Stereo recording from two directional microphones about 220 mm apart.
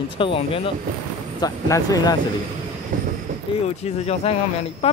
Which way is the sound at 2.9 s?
35° right (ahead or behind).